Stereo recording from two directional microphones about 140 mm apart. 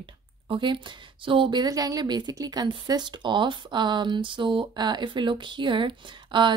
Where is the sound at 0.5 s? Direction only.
35° right (ahead or behind).